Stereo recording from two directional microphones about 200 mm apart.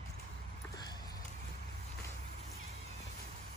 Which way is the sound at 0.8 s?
20° left (ahead or behind).